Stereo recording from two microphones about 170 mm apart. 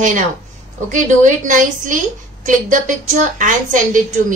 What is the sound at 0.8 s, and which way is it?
A woman's voice, 50° right (ahead or behind).